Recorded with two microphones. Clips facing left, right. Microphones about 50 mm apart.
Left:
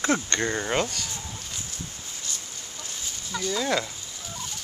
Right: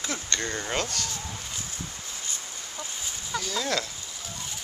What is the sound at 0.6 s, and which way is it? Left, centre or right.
Speech, centre.